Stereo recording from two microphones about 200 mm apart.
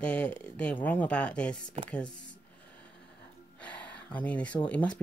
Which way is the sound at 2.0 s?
65° left (ahead or behind).